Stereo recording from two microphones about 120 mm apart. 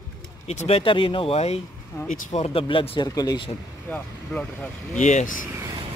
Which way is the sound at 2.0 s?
70° left (ahead or behind).